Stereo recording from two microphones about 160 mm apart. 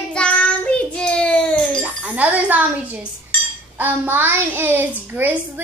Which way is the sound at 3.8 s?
10° right (ahead or behind).